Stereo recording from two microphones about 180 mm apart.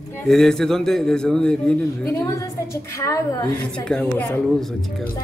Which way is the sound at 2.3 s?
15° left (ahead or behind).